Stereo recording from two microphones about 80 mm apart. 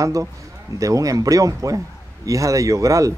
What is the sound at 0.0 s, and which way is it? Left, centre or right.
Speech, right.